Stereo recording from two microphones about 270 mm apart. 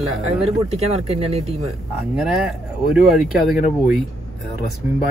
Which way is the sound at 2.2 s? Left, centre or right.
Centre.